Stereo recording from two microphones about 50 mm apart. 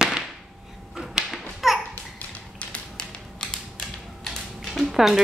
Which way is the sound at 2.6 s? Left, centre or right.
Left.